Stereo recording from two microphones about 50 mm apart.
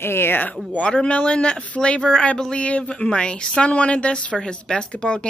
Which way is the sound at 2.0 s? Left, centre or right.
Centre.